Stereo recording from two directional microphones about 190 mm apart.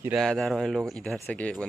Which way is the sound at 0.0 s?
Centre (ahead or behind).